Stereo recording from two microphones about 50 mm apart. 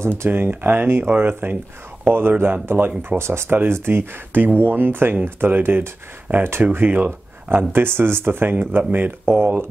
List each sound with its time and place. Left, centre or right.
0.3 s speech: right
3.2 s speech: right
3.4 s speech: right